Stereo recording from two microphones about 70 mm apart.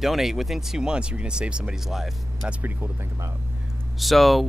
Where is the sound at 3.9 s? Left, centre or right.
Centre.